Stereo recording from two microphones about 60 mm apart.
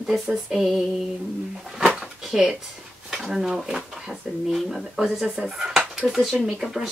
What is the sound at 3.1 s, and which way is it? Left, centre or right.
Speech, centre.